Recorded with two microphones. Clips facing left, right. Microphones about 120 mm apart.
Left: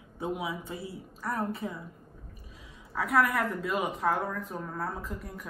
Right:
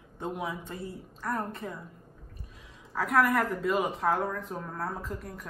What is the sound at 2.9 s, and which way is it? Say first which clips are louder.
Speech: right 1 dB; centre (ahead or behind).